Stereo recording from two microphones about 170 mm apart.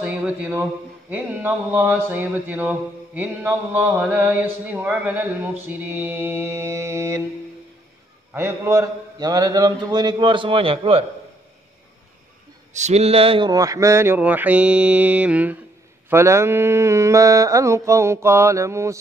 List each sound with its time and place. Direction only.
0.0 s mantra: 10° right (ahead or behind)
8.3 s a man's voice: 15° right (ahead or behind); by 11.1 s 35° right (ahead or behind)
12.7 s mantra: 40° right (ahead or behind); by 18.9 s 15° right (ahead or behind)